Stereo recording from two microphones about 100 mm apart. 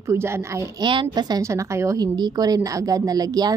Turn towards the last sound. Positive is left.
turn(degrees=-40)  # may be behind; listen again after turning